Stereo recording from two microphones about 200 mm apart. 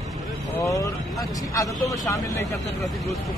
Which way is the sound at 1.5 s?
15° left (ahead or behind).